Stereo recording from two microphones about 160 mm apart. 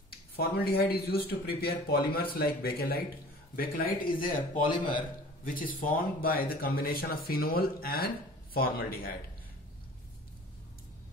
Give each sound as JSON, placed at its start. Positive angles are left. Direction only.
{"t": 0.4, "sound": "speech", "side_deg": 75}
{"t": 5.4, "sound": "speech", "side_deg": 60}